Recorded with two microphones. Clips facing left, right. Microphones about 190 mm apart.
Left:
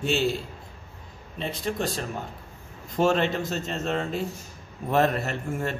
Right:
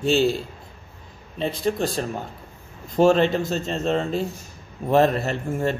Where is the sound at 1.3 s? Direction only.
35° right (ahead or behind).